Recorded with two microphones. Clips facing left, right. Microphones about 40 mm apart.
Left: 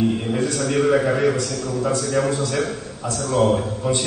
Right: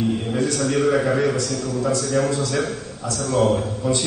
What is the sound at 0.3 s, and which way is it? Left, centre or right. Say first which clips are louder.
A man's voice: even; centre.